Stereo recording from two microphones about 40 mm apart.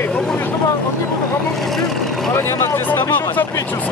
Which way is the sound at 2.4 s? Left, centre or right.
Left.